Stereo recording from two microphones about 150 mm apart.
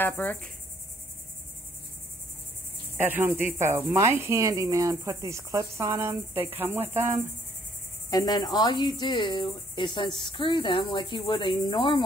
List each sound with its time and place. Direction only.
0.0 s insect: 15° left (ahead or behind)
3.0 s cricket: 15° right (ahead or behind)
8.1 s cricket: 30° left (ahead or behind)